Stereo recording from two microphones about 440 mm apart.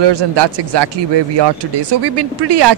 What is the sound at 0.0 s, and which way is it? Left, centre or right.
Speech, right.